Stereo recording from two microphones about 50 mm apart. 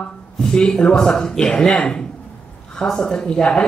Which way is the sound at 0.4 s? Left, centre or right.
Centre.